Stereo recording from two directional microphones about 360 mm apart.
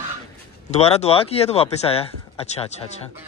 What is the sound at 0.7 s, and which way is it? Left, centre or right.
Speech, centre.